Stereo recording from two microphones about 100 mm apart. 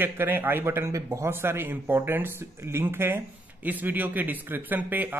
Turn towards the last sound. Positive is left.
turn(degrees=-20)  # may be behind; listen again after turning